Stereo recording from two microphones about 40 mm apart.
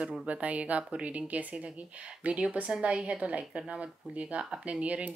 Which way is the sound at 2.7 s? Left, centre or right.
Right.